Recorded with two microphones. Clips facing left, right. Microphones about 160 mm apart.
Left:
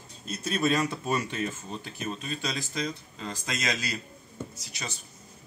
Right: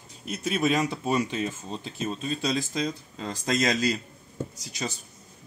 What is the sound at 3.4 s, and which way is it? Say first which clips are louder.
Speech: right 9 dB; 35° right (ahead or behind).